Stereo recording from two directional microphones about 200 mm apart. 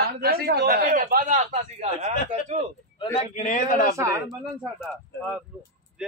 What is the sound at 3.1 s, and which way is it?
Speech, 35° left (ahead or behind).